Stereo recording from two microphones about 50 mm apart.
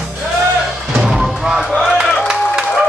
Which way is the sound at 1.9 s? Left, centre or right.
Centre.